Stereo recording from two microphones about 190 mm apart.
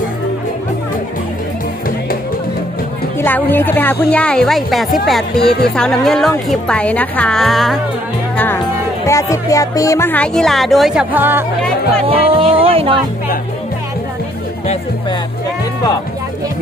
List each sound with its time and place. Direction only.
3.2 s a woman's voice: 10° left (ahead or behind)
9.0 s speech: 15° left (ahead or behind); by 11.4 s 10° right (ahead or behind)
12.0 s speech: 30° right (ahead or behind)